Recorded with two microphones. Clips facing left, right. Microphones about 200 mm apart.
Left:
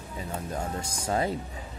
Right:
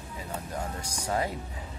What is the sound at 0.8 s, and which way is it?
Speech, 25° left (ahead or behind).